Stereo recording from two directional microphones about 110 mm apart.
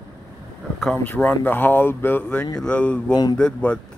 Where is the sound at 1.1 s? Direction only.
15° left (ahead or behind).